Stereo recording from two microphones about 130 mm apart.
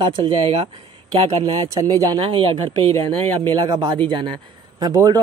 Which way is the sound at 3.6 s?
30° right (ahead or behind).